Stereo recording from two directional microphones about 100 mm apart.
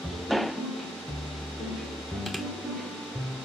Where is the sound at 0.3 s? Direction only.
Centre (ahead or behind).